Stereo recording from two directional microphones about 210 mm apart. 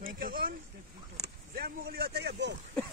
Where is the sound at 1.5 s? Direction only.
45° right (ahead or behind).